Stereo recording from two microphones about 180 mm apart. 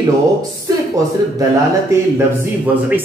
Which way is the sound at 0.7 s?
20° right (ahead or behind).